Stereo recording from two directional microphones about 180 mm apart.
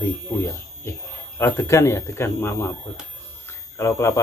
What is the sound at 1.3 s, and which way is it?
Speech, 15° left (ahead or behind).